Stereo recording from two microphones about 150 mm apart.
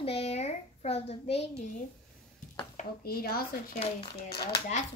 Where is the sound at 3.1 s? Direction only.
90° left.